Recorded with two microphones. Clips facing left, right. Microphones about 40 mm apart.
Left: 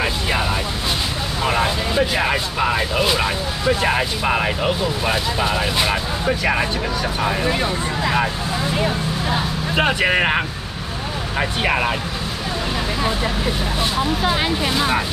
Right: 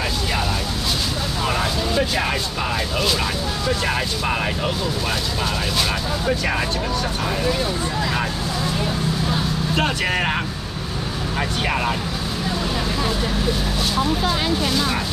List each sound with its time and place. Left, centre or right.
1.4 s speech: centre
7.2 s speech: left
13.9 s speech: centre